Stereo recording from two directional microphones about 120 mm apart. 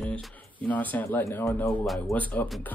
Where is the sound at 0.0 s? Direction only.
10° left (ahead or behind).